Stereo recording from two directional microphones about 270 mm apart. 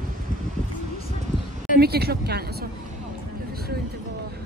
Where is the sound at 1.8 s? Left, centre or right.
Right.